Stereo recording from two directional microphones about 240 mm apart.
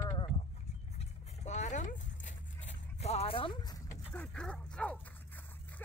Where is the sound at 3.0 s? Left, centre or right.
Left.